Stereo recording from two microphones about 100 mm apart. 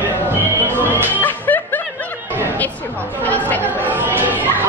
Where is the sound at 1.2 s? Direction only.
20° left (ahead or behind).